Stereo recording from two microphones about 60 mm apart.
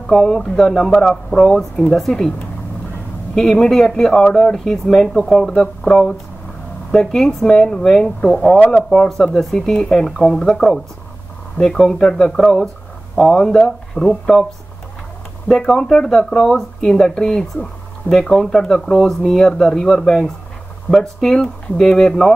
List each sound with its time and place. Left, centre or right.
0.0 s speech: centre
3.3 s speech: centre
8.5 s speech: left
8.9 s speech: centre
13.5 s speech: centre